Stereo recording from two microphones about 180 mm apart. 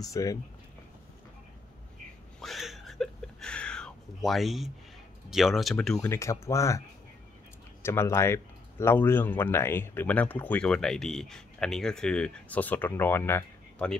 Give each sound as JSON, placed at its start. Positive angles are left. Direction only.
{"t": 0.0, "sound": "speech", "side_deg": 20}
{"t": 2.4, "sound": "a sound", "side_deg": 0}
{"t": 5.3, "sound": "speech", "side_deg": 0}
{"t": 6.1, "sound": "speech", "side_deg": 15}
{"t": 7.8, "sound": "speech", "side_deg": 15}